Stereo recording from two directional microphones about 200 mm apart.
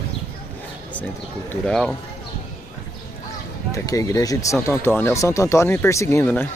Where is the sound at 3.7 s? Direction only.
15° left (ahead or behind).